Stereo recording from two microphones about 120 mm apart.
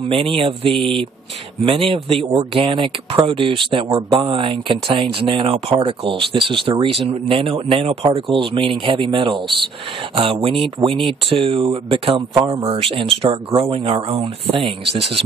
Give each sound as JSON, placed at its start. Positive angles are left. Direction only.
{"t": 0.2, "sound": "speech", "side_deg": -50}